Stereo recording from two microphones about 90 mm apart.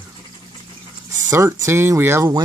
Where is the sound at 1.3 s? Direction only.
30° right (ahead or behind).